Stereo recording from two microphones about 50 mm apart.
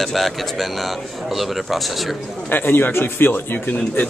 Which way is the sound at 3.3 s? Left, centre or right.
Left.